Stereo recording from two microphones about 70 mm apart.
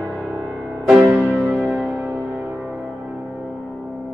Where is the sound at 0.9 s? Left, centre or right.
Centre.